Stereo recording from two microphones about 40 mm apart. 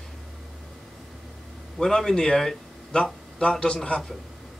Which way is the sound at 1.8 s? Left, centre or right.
Centre.